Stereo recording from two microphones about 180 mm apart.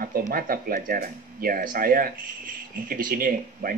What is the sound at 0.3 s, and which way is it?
Speech, 55° right (ahead or behind).